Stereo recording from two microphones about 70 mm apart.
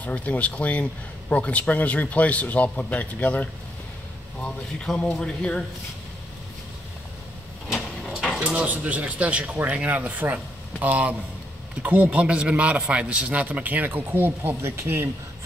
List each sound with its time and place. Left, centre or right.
0.0 s speech: left
4.9 s speech: centre
8.3 s a sound: centre
8.5 s a man's voice: right